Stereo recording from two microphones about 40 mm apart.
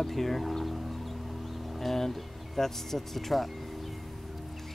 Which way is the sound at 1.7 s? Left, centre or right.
Centre.